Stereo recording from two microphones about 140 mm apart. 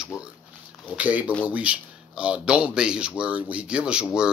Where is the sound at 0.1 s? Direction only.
25° left (ahead or behind).